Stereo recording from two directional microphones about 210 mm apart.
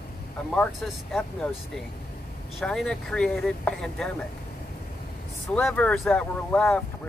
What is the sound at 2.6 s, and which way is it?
Speech, centre (ahead or behind).